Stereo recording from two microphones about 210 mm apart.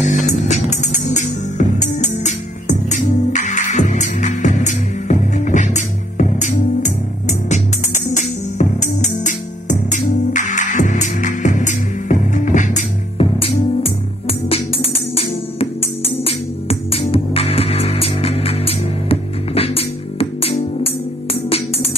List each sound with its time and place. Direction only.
0.0 s music: 35° left (ahead or behind)